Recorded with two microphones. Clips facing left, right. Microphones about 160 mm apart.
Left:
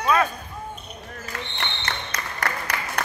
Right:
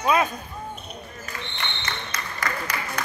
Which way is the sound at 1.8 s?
65° left (ahead or behind).